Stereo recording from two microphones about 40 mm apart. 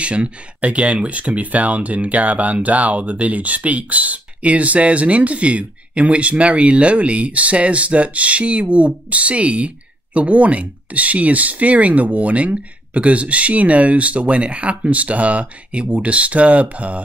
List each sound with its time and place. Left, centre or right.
0.0 s speech: right